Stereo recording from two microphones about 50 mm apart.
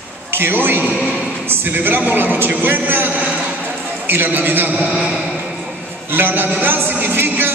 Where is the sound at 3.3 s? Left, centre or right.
Right.